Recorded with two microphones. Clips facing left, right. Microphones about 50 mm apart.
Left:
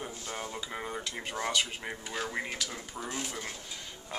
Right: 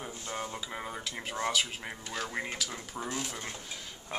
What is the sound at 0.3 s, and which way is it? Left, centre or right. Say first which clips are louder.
Speech: right 2 dB; centre.